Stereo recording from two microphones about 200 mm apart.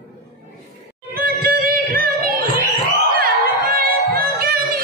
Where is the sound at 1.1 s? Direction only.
50° right (ahead or behind).